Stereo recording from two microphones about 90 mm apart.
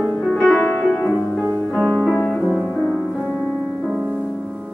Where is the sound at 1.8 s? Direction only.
15° left (ahead or behind).